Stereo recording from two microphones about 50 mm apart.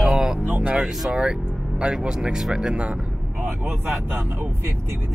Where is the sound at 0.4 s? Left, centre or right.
Right.